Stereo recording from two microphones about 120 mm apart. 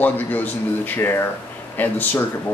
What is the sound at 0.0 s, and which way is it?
Speech, 15° left (ahead or behind).